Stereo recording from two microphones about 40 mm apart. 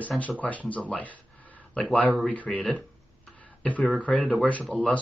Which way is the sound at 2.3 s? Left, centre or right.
Left.